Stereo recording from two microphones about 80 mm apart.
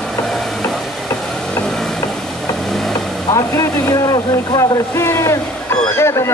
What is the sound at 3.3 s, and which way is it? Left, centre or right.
Speech, left.